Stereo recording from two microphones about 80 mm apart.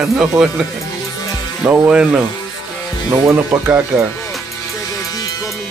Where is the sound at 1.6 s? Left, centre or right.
Centre.